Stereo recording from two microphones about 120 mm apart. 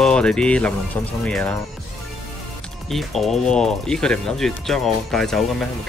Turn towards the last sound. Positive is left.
turn(degrees=5)  # may be behind; listen again after turning